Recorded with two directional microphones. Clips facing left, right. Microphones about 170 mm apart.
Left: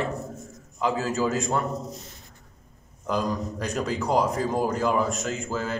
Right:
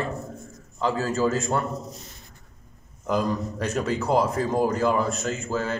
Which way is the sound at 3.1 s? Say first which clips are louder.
Right 2 dB; 5° right (ahead or behind).